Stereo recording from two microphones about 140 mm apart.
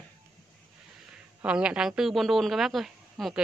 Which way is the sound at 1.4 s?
10° right (ahead or behind).